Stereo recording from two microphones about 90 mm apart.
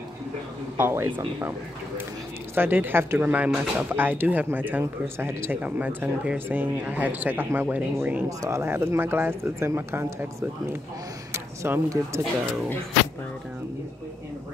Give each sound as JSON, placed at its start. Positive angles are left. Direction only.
{"t": 0.7, "sound": "speech", "side_deg": -25}
{"t": 2.5, "sound": "speech", "side_deg": -25}
{"t": 8.3, "sound": "speech", "side_deg": -35}